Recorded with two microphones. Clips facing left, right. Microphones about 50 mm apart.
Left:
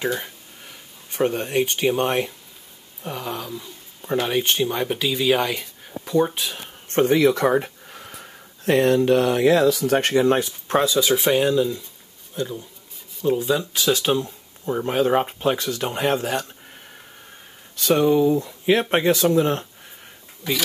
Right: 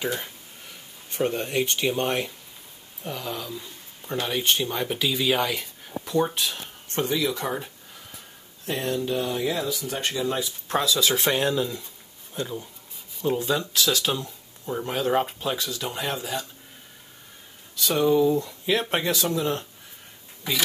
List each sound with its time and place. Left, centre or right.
1.1 s speech: centre
6.9 s speech: left
10.7 s speech: left
11.1 s speech: centre
13.7 s speech: left
15.5 s speech: left
17.7 s speech: left
20.4 s speech: centre